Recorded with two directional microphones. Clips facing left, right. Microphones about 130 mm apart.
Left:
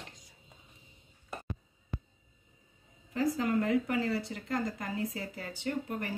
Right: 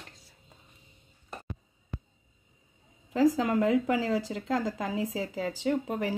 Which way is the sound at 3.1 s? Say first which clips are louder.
Right 6 dB; 90° right.